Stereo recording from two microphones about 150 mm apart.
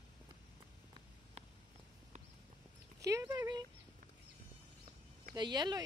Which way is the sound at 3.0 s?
20° right (ahead or behind).